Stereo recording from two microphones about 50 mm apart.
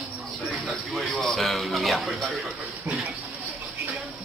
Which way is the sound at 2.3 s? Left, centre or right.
Centre.